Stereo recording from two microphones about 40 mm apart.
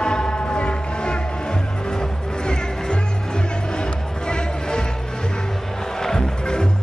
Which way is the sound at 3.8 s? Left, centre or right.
Left.